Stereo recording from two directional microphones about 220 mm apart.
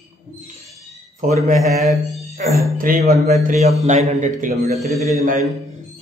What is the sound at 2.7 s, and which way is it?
Speech, 40° right (ahead or behind).